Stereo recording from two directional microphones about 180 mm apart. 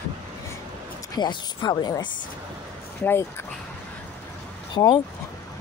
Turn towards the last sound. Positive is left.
turn(degrees=20)  # may be behind; listen again after turning